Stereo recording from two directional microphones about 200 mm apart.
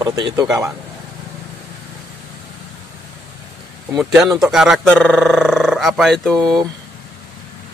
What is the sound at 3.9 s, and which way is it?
Speech, centre (ahead or behind).